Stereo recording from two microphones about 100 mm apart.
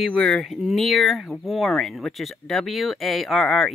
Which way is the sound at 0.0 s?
5° left (ahead or behind).